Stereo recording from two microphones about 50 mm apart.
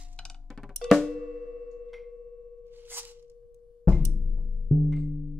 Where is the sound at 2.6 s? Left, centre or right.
Right.